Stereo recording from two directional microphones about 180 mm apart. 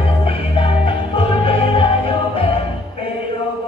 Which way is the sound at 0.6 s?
30° left (ahead or behind).